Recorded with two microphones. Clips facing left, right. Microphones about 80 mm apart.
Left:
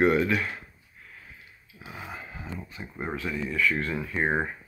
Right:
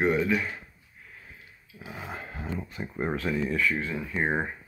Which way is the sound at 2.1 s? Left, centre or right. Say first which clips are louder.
Right 6 dB; right.